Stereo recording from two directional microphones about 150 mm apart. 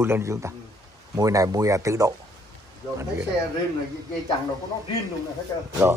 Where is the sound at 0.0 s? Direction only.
20° right (ahead or behind).